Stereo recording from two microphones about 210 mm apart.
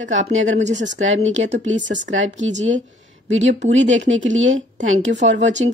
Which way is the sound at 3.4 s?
35° right (ahead or behind).